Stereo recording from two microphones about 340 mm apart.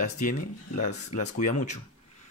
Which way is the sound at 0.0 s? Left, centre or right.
Left.